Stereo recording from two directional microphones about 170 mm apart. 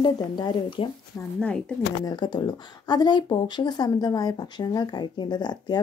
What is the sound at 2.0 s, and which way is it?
Speech, 25° left (ahead or behind).